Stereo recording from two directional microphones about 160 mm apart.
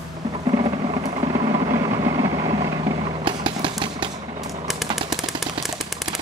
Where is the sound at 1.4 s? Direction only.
25° right (ahead or behind).